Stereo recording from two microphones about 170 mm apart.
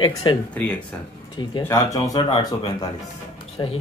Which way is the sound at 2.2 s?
30° left (ahead or behind).